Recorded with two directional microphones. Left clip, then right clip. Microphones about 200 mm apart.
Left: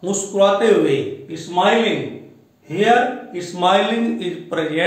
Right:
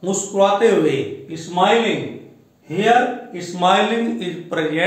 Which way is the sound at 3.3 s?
20° right (ahead or behind).